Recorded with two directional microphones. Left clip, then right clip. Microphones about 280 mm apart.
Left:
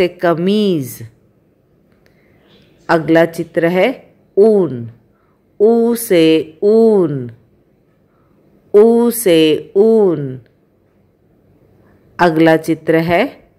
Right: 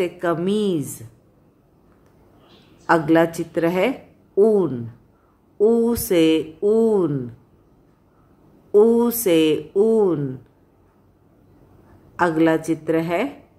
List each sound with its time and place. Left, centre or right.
0.0 s speech: centre
2.9 s speech: centre
8.7 s speech: centre
12.2 s speech: centre